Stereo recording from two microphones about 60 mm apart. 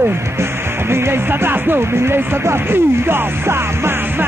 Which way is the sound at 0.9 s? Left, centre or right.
Right.